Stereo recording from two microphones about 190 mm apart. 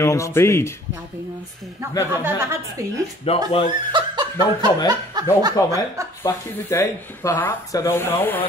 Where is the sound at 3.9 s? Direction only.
25° right (ahead or behind).